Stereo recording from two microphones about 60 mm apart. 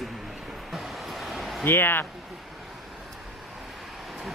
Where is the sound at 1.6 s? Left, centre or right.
Left.